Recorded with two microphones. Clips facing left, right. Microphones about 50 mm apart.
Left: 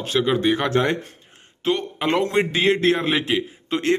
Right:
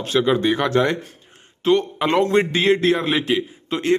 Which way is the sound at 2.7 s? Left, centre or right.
Left.